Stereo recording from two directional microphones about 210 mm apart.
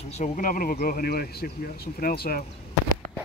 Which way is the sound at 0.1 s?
35° left (ahead or behind).